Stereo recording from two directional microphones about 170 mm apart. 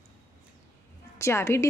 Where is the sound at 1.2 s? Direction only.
15° left (ahead or behind).